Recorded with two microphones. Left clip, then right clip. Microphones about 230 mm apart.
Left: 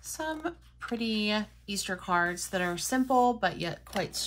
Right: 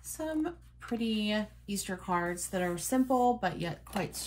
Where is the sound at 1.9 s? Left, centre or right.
Centre.